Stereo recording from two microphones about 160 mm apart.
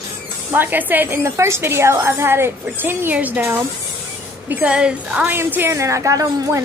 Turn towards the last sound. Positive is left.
turn(degrees=-20)  # may be behind; listen again after turning